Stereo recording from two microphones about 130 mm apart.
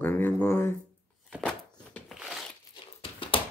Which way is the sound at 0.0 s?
15° left (ahead or behind).